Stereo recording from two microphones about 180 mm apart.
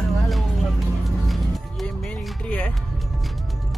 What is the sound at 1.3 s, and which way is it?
Music, 5° left (ahead or behind).